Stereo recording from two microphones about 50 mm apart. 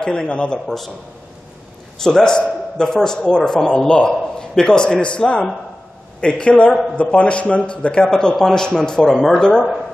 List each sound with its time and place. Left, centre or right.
0.0 s speech: centre
0.7 s a man's voice: centre
2.0 s a man's voice: centre
9.4 s a man's voice: centre